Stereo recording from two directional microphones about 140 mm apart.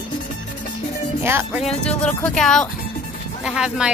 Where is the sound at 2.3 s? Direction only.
5° left (ahead or behind).